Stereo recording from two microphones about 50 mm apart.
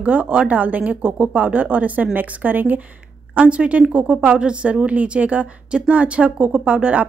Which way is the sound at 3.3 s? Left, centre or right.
Right.